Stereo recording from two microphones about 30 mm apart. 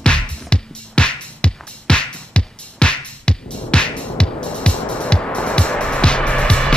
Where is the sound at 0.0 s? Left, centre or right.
Left.